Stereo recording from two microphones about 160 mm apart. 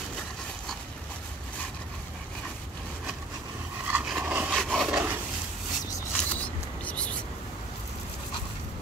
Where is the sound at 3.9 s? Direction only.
10° right (ahead or behind).